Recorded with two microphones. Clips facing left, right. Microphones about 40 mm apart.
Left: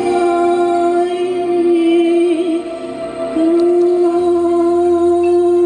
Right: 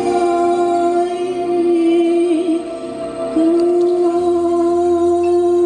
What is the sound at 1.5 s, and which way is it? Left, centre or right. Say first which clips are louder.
Music: left 1 dB; centre.